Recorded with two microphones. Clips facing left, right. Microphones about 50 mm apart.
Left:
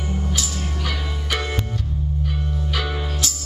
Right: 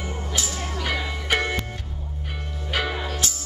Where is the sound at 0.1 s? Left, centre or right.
Right.